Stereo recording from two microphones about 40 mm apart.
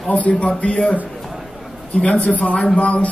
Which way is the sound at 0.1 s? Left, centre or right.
Left.